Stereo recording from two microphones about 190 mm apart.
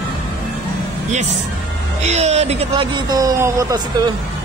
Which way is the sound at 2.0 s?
35° right (ahead or behind).